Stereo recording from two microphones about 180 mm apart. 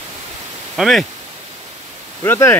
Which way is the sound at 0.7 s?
Centre (ahead or behind).